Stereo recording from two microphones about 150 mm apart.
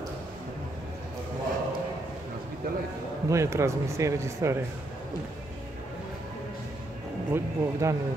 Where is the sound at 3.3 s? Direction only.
20° right (ahead or behind).